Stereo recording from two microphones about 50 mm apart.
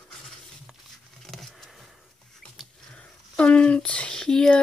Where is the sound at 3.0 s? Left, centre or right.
Left.